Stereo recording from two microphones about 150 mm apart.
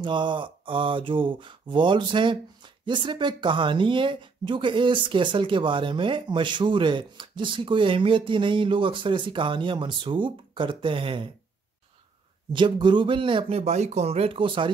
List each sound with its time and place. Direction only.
0.0 s speech: 30° right (ahead or behind)
12.5 s speech: 30° right (ahead or behind)